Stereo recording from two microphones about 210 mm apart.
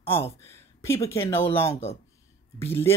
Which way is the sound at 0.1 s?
10° left (ahead or behind).